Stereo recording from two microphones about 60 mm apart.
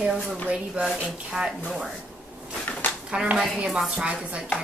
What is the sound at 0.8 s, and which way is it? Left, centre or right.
Chopping, right.